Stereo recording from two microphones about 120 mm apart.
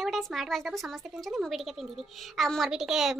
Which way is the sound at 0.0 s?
Centre (ahead or behind).